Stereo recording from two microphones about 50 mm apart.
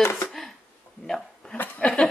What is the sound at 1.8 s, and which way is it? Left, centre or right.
Speech, centre.